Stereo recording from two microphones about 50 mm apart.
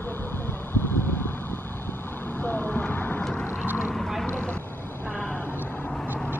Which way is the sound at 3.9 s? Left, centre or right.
Centre.